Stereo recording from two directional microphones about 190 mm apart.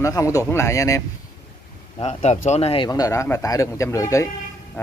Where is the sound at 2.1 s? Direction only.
35° left (ahead or behind); by 4.3 s 15° left (ahead or behind).